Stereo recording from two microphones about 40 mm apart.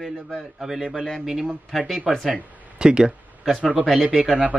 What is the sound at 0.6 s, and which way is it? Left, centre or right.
Speech, centre.